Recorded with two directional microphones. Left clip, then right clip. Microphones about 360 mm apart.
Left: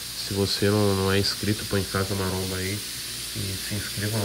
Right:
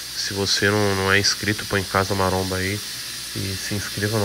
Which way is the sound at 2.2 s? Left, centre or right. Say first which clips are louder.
Right 7 dB; left.